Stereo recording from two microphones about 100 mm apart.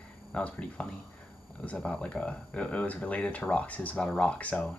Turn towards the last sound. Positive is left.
turn(degrees=10)  # may be behind; listen again after turning